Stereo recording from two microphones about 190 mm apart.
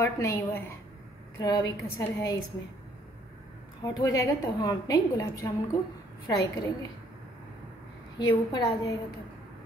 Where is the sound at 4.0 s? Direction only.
20° left (ahead or behind).